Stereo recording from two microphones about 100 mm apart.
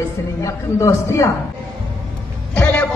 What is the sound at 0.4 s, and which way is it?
Speech, 30° left (ahead or behind).